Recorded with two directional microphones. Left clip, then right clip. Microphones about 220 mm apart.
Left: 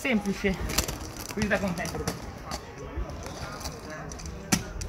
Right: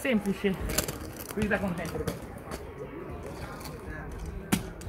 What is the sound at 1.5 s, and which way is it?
Speech, 25° left (ahead or behind).